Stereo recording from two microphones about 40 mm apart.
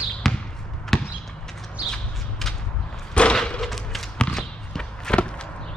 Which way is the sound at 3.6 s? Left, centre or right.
Centre.